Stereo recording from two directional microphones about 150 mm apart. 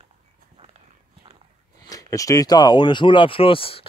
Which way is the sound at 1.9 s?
20° left (ahead or behind).